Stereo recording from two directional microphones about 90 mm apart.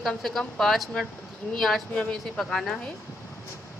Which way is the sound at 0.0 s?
Centre (ahead or behind).